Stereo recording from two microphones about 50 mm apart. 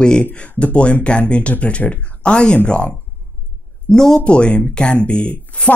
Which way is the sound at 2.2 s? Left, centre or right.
Centre.